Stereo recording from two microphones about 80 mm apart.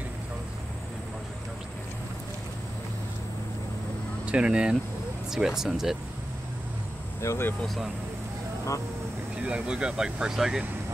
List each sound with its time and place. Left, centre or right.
4.3 s speech: centre
7.2 s speech: left
7.6 s speech: centre
9.4 s speech: centre